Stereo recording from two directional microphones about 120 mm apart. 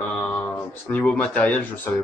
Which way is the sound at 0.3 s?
15° left (ahead or behind).